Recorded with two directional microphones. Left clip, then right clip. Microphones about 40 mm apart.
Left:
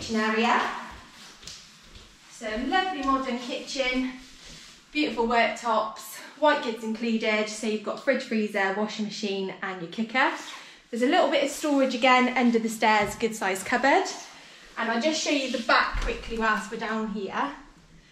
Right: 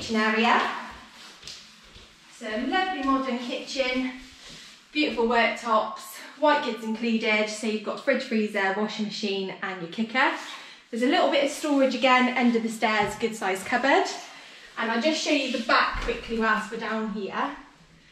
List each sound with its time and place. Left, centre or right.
0.0 s speech: centre
2.4 s a woman's voice: left
14.8 s a woman's voice: left